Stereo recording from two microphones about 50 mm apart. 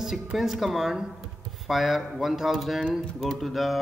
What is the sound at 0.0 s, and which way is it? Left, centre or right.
A man's voice, centre.